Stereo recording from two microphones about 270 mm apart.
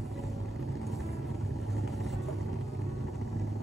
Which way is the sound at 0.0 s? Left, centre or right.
Centre.